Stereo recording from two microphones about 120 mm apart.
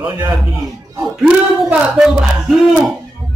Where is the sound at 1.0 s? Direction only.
5° right (ahead or behind).